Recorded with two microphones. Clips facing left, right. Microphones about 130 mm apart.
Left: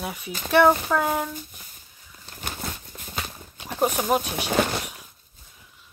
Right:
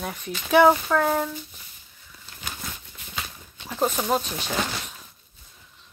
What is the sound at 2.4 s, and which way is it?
Horse, 45° left (ahead or behind).